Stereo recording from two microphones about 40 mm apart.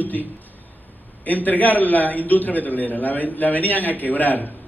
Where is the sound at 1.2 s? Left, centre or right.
Left.